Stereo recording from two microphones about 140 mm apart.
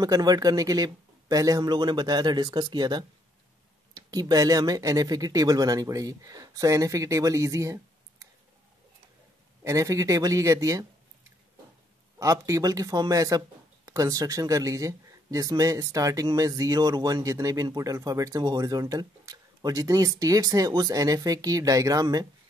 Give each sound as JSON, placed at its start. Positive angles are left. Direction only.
{"t": 0.0, "sound": "speech", "side_deg": -30}
{"t": 9.6, "sound": "speech", "side_deg": -20}
{"t": 12.2, "sound": "speech", "side_deg": -25}